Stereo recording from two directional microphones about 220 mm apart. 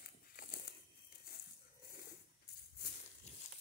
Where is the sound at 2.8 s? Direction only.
45° left (ahead or behind).